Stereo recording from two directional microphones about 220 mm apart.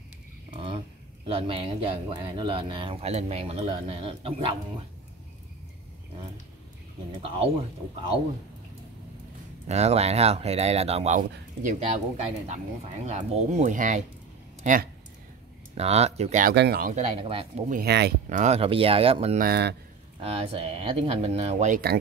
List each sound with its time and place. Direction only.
1.2 s speech: 25° right (ahead or behind)
9.7 s speech: 30° right (ahead or behind)
16.5 s speech: 45° right (ahead or behind); by 17.7 s 25° right (ahead or behind)
17.7 s speech: 50° right (ahead or behind)
18.3 s speech: 30° right (ahead or behind)
19.4 s speech: 45° right (ahead or behind)
20.2 s speech: 25° right (ahead or behind)